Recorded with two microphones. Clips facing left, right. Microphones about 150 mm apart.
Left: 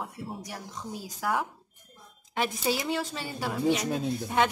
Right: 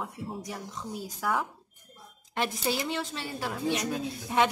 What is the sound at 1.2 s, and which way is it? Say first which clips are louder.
Speech: left 1 dB; 5° left (ahead or behind).